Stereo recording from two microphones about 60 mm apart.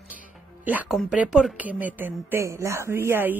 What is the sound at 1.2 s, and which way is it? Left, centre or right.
Speech, centre.